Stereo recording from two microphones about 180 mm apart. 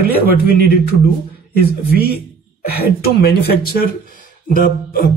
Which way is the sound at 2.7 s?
60° left (ahead or behind).